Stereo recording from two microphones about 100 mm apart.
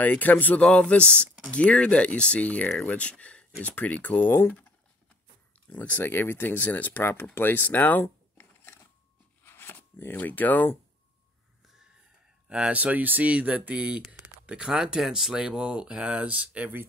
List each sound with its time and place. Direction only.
0.0 s speech: 15° left (ahead or behind)
5.7 s speech: 15° left (ahead or behind)
7.3 s a sound: 20° left (ahead or behind)
12.4 s speech: 10° right (ahead or behind)